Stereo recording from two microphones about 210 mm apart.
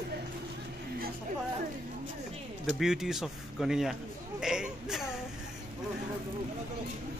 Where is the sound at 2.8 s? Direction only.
Centre (ahead or behind).